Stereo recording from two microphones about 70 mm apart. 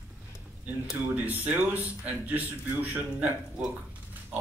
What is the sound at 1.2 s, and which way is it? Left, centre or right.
Speech, right.